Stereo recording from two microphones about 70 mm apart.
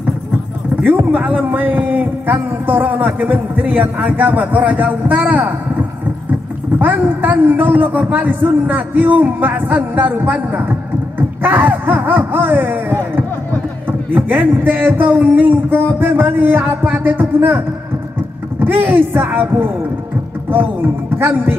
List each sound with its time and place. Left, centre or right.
0.8 s a man's voice: right
20.5 s a man's voice: right